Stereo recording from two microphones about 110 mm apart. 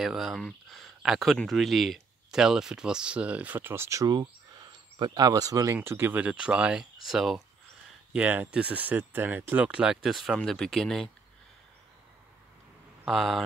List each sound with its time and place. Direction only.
0.0 s speech: centre (ahead or behind); by 4.1 s 25° right (ahead or behind)
4.1 s speech: 40° right (ahead or behind)
5.8 s speech: 20° right (ahead or behind); by 7.4 s centre (ahead or behind)
8.1 s speech: 15° right (ahead or behind); by 11.1 s centre (ahead or behind)
13.0 s speech: centre (ahead or behind)